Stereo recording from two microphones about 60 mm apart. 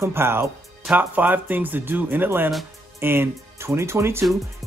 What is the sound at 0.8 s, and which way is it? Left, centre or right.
Speech, right.